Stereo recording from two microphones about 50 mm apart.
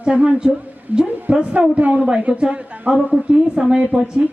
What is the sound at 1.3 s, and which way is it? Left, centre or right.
A woman's voice, centre.